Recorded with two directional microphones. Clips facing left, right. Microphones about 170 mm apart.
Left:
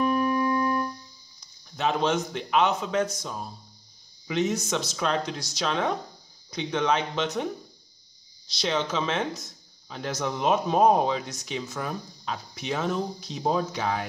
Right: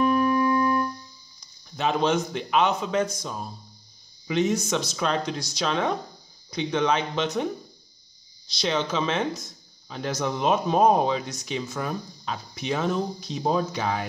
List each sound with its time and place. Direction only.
1.4 s speech: centre (ahead or behind)
8.5 s speech: 5° left (ahead or behind)